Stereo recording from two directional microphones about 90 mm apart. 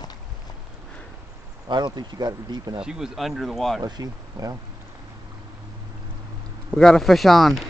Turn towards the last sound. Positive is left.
turn(degrees=5)  # may be behind; listen again after turning